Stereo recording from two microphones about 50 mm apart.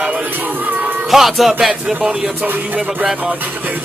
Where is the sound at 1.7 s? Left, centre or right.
Centre.